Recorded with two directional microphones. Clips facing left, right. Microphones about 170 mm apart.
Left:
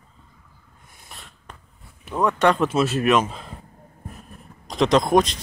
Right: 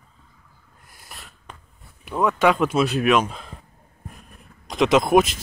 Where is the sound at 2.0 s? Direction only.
Centre (ahead or behind).